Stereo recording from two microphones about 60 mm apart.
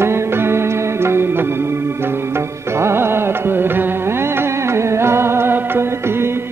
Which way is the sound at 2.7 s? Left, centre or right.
Right.